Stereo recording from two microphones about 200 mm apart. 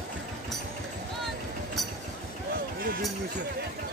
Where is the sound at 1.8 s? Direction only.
Centre (ahead or behind).